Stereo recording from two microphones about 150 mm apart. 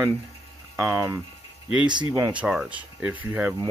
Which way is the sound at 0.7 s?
10° right (ahead or behind).